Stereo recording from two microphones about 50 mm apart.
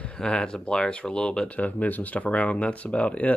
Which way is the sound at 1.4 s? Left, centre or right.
Left.